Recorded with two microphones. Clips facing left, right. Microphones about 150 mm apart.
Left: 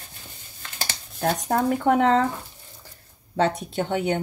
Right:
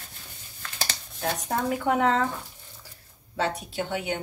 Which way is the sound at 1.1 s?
45° left (ahead or behind).